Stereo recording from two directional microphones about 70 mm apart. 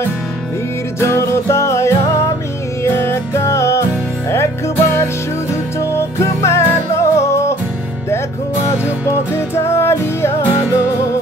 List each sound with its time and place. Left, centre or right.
0.9 s music: left
6.1 s music: left
9.3 s music: left